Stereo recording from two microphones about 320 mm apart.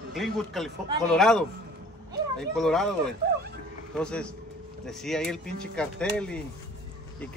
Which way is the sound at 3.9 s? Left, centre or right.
Centre.